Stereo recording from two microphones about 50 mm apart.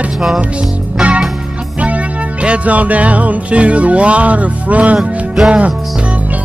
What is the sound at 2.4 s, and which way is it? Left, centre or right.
Music, right.